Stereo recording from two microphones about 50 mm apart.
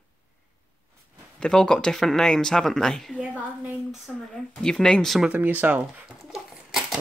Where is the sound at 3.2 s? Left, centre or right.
Right.